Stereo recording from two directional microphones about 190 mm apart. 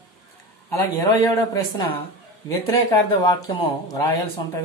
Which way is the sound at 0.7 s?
15° left (ahead or behind).